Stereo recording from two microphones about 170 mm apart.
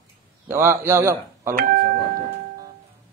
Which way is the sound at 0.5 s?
15° right (ahead or behind).